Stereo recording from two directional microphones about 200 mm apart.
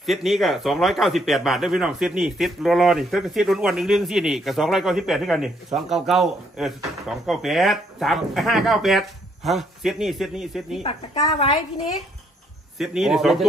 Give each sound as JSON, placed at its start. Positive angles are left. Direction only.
{"t": 0.0, "sound": "speech", "side_deg": 0}
{"t": 10.8, "sound": "a woman's voice", "side_deg": 25}
{"t": 12.7, "sound": "speech", "side_deg": 0}